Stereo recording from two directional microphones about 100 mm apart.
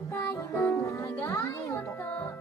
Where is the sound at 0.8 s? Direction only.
30° left (ahead or behind).